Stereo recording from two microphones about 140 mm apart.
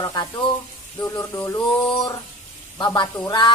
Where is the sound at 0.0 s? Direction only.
25° left (ahead or behind).